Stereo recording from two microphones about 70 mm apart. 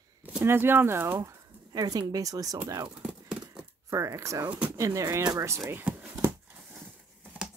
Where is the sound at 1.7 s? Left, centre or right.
Right.